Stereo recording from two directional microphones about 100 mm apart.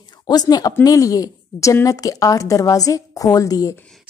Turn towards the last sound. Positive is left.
turn(degrees=35)  # may be behind; listen again after turning